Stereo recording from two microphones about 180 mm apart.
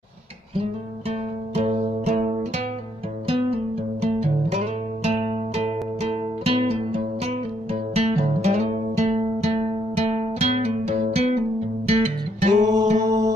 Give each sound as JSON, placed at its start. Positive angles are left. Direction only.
{"t": 0.6, "sound": "music", "side_deg": -35}
{"t": 4.0, "sound": "music", "side_deg": -35}
{"t": 13.0, "sound": "music", "side_deg": -20}